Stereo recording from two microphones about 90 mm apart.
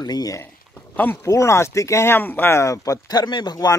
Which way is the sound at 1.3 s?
35° left (ahead or behind).